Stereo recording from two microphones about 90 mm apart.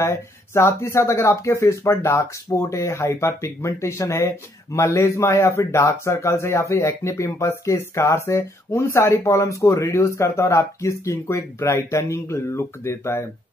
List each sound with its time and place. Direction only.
0.0 s a man's voice: 30° left (ahead or behind)